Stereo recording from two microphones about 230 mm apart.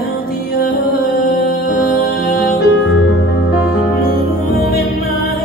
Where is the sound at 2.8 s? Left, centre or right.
Left.